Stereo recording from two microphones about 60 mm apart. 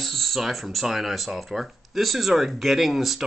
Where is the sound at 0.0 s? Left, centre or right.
Centre.